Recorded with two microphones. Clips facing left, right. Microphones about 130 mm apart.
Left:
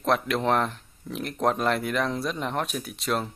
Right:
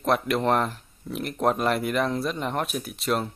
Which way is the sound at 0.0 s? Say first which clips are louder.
Right 1 dB; centre (ahead or behind).